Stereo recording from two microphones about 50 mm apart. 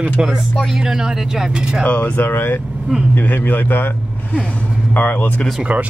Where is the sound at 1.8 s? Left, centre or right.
Left.